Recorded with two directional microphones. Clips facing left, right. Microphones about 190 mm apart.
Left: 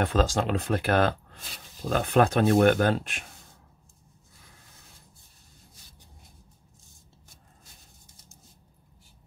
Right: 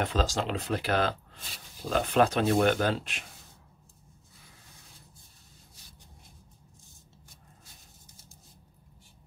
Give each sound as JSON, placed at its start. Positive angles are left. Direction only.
{"t": 0.0, "sound": "speech", "side_deg": 50}